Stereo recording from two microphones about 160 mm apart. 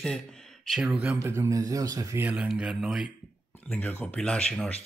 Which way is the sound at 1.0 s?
15° right (ahead or behind).